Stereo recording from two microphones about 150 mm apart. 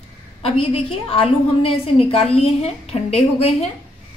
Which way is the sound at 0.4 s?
35° left (ahead or behind).